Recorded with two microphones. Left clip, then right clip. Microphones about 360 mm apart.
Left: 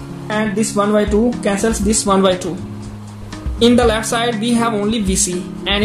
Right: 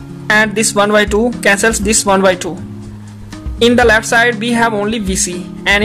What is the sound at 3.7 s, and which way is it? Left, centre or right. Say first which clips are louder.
Speech: right 5 dB; right.